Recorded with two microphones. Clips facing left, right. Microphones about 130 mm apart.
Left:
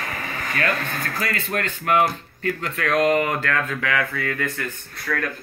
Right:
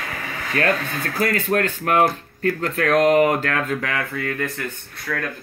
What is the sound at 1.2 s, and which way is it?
Speech, 50° right (ahead or behind).